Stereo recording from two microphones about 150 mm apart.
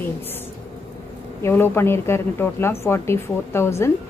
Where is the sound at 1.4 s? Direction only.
15° left (ahead or behind).